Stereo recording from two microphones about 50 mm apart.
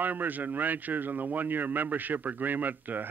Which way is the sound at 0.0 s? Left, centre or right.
Right.